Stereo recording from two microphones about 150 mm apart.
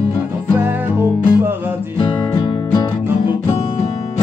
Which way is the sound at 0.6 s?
15° right (ahead or behind).